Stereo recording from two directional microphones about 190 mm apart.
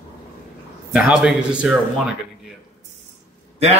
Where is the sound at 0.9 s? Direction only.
5° right (ahead or behind).